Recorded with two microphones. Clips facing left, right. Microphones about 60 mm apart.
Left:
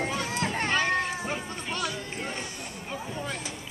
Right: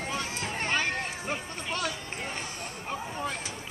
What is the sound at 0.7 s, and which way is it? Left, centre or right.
Run, centre.